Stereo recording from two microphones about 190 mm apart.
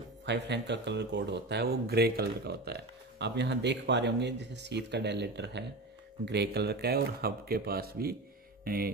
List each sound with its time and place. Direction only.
0.2 s speech: 65° right (ahead or behind)